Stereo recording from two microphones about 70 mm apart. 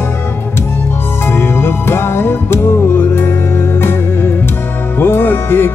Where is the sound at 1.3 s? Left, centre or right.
Left.